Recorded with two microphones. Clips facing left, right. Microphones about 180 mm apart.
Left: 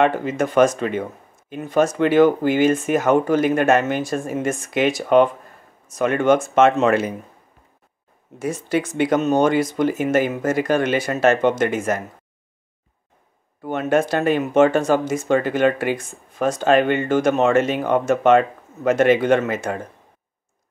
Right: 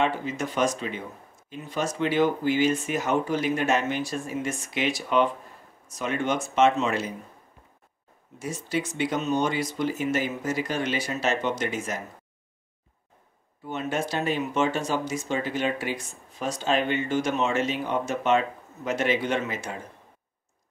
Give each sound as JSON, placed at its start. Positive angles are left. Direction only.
{"t": 0.0, "sound": "speech", "side_deg": 55}
{"t": 8.4, "sound": "speech", "side_deg": 55}
{"t": 13.6, "sound": "speech", "side_deg": 55}